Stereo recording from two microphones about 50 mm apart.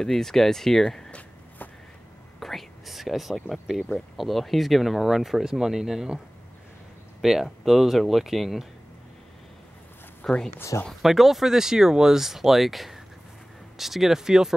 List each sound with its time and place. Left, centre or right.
0.0 s speech: centre
2.4 s whispering: centre
3.3 s speech: centre
10.2 s speech: centre
11.0 s speech: centre